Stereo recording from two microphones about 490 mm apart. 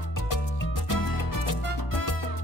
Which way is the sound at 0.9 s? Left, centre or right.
Left.